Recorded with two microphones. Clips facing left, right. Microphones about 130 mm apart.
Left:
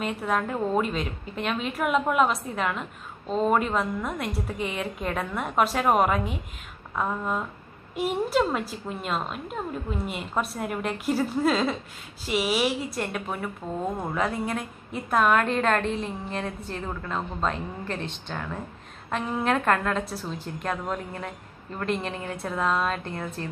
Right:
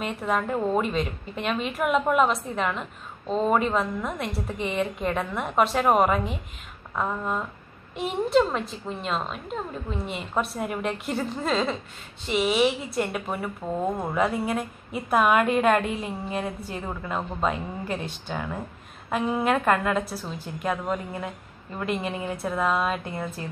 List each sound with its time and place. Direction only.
0.0 s a woman's voice: centre (ahead or behind)